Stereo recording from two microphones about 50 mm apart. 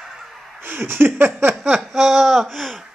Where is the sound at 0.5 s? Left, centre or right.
Right.